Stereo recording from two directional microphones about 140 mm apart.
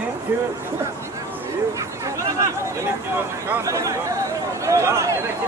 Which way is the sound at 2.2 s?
25° right (ahead or behind).